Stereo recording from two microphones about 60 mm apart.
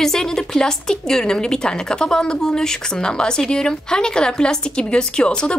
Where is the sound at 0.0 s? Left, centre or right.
Centre.